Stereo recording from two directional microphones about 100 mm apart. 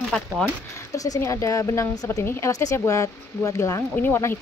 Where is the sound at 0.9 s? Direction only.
35° left (ahead or behind).